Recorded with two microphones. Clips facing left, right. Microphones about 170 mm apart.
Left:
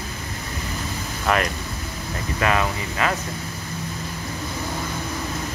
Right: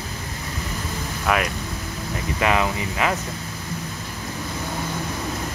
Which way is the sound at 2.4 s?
15° right (ahead or behind).